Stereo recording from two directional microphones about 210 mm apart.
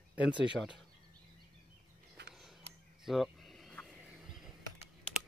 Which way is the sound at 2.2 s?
55° right (ahead or behind).